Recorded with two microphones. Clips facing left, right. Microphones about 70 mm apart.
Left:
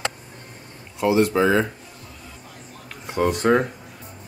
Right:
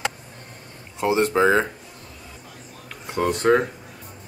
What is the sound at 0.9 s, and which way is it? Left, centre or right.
Speech, right.